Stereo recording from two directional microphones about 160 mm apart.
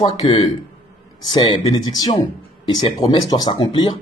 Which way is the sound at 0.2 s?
30° left (ahead or behind).